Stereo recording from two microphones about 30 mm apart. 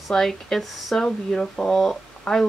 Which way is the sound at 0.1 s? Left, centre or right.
Centre.